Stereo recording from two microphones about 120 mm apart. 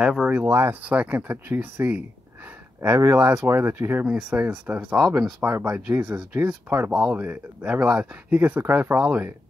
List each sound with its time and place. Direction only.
0.0 s speech: 5° right (ahead or behind)
0.5 s speech: 20° right (ahead or behind)
4.0 s speech: 10° right (ahead or behind)
6.9 s speech: 5° right (ahead or behind)